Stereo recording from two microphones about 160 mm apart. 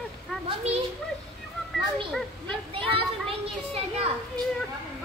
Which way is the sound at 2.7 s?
35° right (ahead or behind).